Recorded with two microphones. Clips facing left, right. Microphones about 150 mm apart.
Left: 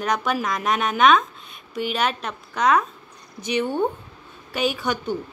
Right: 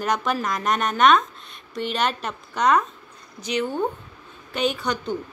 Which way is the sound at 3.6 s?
25° left (ahead or behind).